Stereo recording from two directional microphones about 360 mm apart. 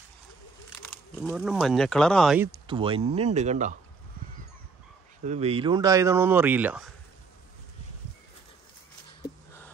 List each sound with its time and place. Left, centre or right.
0.8 s speech: centre
5.2 s speech: centre